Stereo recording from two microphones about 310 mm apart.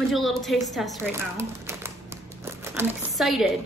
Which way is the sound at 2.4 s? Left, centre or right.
Centre.